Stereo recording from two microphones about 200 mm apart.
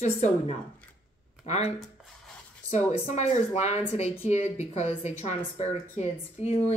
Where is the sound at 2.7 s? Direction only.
35° left (ahead or behind).